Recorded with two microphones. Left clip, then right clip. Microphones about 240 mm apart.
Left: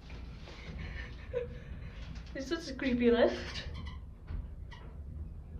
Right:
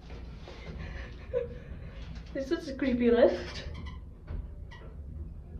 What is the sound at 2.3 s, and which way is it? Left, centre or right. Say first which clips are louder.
A woman's voice: right 5 dB; centre.